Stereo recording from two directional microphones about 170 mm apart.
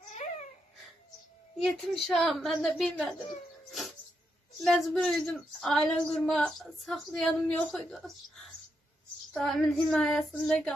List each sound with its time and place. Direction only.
0.1 s babbling: 45° left (ahead or behind)
1.6 s speech: centre (ahead or behind)
4.6 s speech: centre (ahead or behind)
9.3 s speech: centre (ahead or behind)